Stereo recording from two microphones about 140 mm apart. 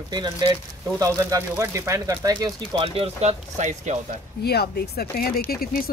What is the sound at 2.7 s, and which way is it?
Speech, 40° right (ahead or behind).